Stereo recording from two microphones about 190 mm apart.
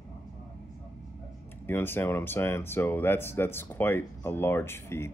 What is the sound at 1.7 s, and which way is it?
Speech, 10° left (ahead or behind).